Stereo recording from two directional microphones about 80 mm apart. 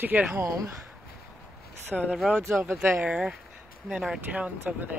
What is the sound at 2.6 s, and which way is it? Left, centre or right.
Speech, right.